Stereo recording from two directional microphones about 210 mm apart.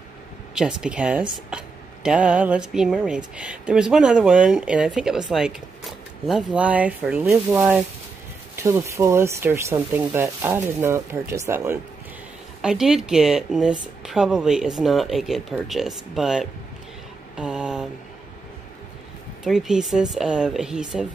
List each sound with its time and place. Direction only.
0.6 s speech: 5° right (ahead or behind)
17.4 s a sound: 5° right (ahead or behind)
19.4 s speech: centre (ahead or behind)